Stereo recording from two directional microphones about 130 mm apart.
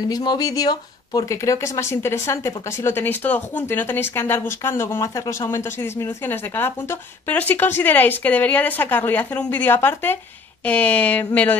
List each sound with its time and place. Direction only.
0.1 s speech: 30° left (ahead or behind); by 11.2 s 10° left (ahead or behind)